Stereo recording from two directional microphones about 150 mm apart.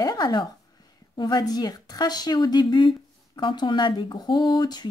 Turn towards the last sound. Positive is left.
turn(degrees=30)  # may be behind; listen again after turning